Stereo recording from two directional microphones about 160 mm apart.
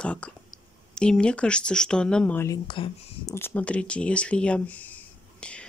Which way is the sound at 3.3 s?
10° left (ahead or behind).